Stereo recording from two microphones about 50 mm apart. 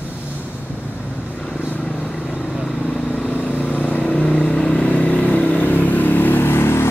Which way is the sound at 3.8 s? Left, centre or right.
Left.